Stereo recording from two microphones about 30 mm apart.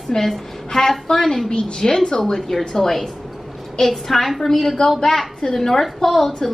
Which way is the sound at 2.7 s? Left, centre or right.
Centre.